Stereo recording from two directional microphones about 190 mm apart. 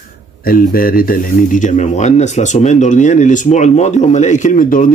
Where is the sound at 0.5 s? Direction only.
50° left (ahead or behind).